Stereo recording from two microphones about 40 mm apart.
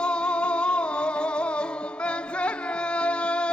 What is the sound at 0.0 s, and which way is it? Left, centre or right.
Music, left.